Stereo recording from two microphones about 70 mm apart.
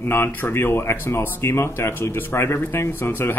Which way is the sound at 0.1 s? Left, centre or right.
Left.